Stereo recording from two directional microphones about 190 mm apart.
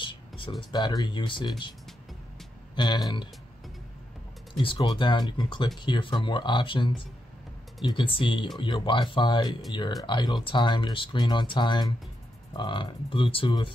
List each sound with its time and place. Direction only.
0.0 s speech: 25° left (ahead or behind)
4.6 s speech: 25° left (ahead or behind)